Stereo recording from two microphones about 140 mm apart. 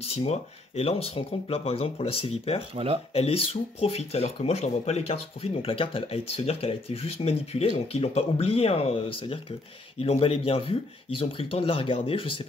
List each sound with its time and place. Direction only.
0.0 s speech: 45° left (ahead or behind)
2.7 s speech: 45° right (ahead or behind)
3.1 s speech: 45° left (ahead or behind)